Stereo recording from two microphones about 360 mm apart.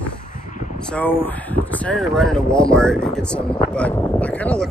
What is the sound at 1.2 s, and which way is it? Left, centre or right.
Speech, centre.